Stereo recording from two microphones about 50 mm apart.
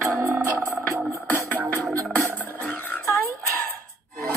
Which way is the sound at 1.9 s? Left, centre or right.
Right.